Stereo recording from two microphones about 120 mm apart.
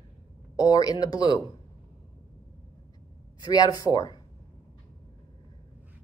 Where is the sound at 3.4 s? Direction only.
30° left (ahead or behind).